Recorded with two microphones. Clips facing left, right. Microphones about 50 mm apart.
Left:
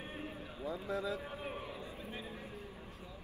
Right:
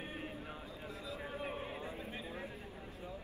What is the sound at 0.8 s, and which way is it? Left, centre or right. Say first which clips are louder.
Speech: left 8 dB; left.